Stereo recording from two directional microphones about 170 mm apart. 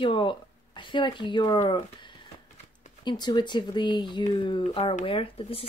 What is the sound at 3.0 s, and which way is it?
Speech, 25° left (ahead or behind).